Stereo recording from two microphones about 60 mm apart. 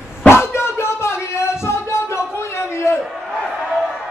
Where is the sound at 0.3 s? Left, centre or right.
Left.